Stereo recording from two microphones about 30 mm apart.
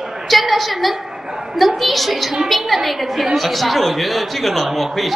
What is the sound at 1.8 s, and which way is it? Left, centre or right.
A man's voice, centre.